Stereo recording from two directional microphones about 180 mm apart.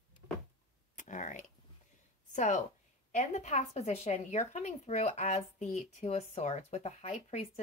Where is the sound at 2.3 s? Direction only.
40° left (ahead or behind).